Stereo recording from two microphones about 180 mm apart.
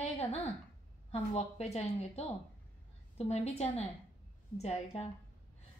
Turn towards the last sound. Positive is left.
turn(degrees=35)  # may be behind; listen again after turning